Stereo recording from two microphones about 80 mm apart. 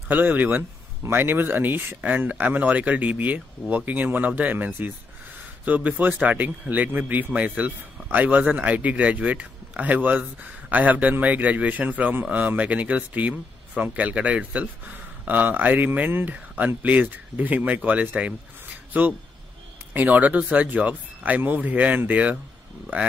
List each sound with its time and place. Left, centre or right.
0.1 s a man's voice: right
19.9 s a man's voice: right